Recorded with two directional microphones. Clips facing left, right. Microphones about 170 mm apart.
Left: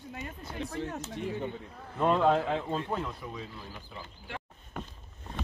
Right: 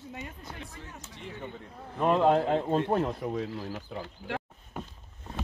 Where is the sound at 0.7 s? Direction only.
75° left (ahead or behind).